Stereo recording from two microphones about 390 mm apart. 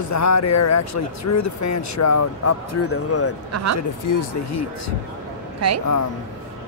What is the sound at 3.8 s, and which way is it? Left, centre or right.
Speech, left.